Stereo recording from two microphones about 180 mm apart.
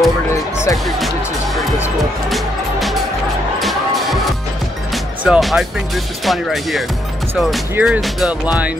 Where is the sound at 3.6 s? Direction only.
Centre (ahead or behind).